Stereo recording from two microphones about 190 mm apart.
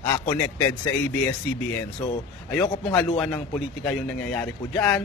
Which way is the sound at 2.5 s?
5° left (ahead or behind).